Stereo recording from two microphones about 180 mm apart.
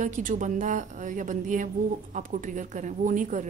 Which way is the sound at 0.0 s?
45° right (ahead or behind).